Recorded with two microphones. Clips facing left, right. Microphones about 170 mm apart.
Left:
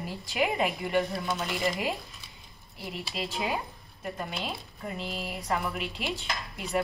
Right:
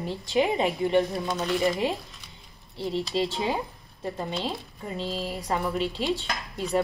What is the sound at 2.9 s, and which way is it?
Speech, 30° right (ahead or behind).